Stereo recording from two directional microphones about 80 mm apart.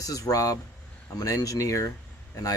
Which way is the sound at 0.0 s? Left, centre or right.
Left.